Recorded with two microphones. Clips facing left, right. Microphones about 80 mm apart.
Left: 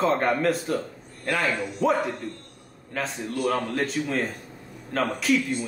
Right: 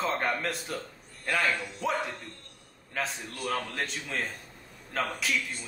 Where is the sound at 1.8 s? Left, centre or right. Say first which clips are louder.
Left 11 dB; centre.